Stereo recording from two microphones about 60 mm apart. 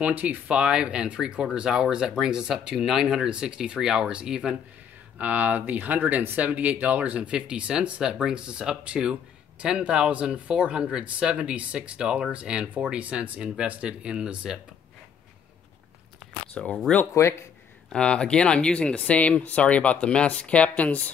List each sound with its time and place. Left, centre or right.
0.0 s speech: right
5.2 s speech: right
16.6 s speech: centre
17.1 s speech: left
17.9 s speech: centre